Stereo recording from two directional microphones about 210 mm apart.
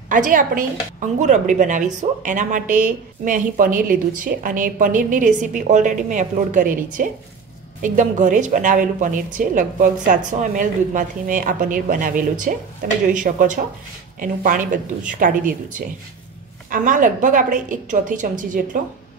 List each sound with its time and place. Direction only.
0.1 s a woman's voice: 40° right (ahead or behind)